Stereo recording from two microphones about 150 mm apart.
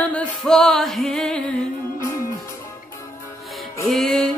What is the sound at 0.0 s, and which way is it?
Music, 5° left (ahead or behind).